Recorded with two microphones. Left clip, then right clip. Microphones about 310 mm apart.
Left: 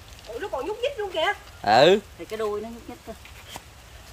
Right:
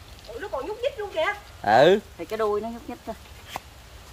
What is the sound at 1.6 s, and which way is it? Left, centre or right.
Speech, centre.